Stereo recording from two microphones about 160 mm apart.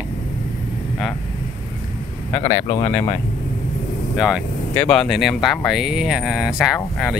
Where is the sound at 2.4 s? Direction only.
35° left (ahead or behind).